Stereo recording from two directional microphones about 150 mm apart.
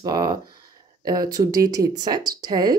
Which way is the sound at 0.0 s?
25° right (ahead or behind).